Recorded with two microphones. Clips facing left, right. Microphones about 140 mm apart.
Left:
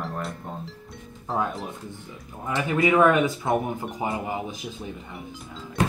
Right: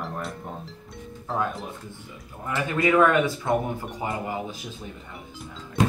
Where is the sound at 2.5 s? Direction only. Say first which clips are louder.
Left 1 dB; 20° left (ahead or behind).